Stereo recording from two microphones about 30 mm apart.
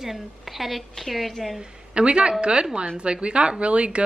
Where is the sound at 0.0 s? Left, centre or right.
Centre.